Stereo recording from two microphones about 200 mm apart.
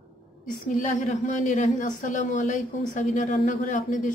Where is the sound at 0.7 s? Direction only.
40° left (ahead or behind).